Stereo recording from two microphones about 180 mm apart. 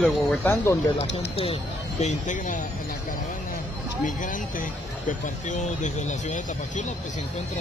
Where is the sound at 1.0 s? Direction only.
70° left (ahead or behind).